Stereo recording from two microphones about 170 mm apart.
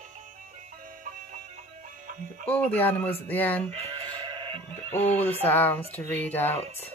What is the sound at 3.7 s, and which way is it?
Sheep, 30° right (ahead or behind).